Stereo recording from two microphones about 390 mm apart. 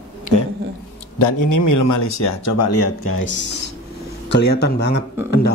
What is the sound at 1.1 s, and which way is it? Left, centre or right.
Speech, left.